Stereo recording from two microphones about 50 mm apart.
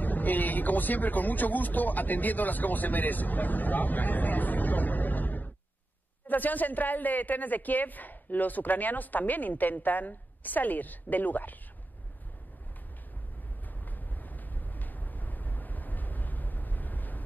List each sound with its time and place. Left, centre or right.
0.0 s a woman's voice: left
13.8 s vehicle: left